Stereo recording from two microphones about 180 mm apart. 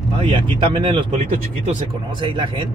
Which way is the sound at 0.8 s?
30° right (ahead or behind).